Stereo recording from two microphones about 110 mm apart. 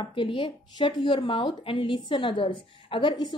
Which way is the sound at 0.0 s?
50° left (ahead or behind).